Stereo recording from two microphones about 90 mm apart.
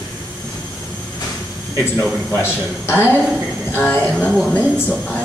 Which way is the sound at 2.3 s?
25° left (ahead or behind).